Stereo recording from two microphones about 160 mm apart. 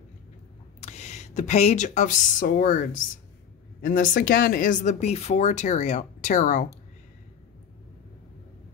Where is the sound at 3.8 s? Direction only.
60° left (ahead or behind).